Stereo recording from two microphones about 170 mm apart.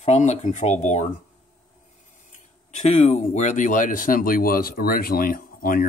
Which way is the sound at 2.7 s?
40° left (ahead or behind).